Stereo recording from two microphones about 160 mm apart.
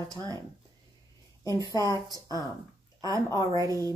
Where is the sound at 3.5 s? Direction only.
20° right (ahead or behind).